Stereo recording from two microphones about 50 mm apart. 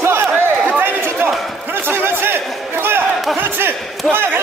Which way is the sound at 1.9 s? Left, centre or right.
Right.